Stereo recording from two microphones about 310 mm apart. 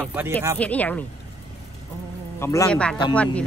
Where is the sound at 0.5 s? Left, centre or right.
Centre.